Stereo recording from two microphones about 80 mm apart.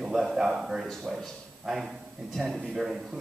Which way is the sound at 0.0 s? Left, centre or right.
Centre.